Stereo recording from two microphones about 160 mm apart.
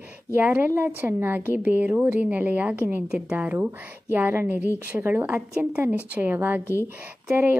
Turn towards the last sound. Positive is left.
turn(degrees=-10)  # may be behind; listen again after turning